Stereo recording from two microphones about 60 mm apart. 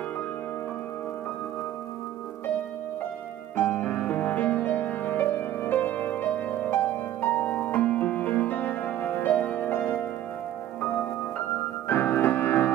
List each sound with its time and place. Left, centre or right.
3.5 s music: left
9.7 s music: left
10.8 s music: left